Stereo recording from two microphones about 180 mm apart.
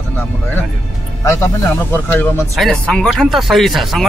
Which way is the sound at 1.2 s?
15° left (ahead or behind).